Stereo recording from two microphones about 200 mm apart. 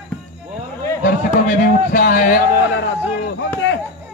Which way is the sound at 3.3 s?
65° left (ahead or behind).